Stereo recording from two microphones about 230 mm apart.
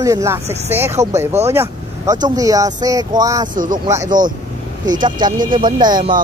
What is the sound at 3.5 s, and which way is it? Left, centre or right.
Speech, right.